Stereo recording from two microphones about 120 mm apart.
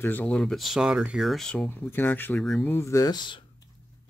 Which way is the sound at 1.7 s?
15° left (ahead or behind).